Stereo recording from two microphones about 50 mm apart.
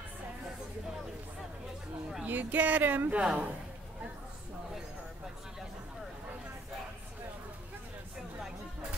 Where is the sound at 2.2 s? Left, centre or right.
Right.